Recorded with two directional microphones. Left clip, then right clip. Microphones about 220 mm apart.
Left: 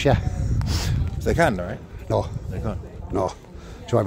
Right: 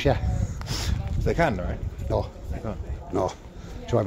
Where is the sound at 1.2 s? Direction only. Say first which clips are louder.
Left 4 dB; 50° left (ahead or behind).